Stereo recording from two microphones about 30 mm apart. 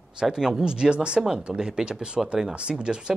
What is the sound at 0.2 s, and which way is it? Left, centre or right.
Speech, right.